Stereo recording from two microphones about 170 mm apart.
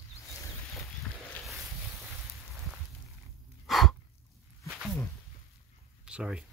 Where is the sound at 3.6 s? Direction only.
Centre (ahead or behind).